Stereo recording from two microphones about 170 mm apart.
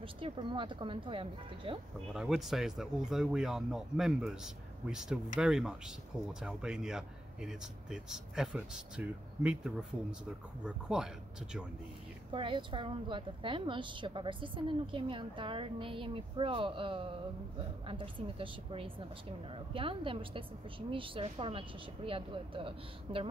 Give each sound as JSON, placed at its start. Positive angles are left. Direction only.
{"t": 0.0, "sound": "a woman's voice", "side_deg": -30}
{"t": 2.1, "sound": "speech", "side_deg": 0}
{"t": 12.3, "sound": "a woman's voice", "side_deg": -30}